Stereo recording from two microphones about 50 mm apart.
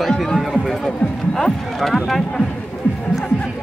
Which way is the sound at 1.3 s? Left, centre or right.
Centre.